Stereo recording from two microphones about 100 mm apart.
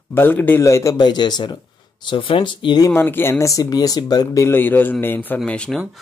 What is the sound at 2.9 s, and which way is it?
Speech, 20° left (ahead or behind).